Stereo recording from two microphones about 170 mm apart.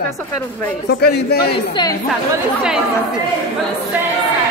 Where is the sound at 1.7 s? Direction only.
25° left (ahead or behind).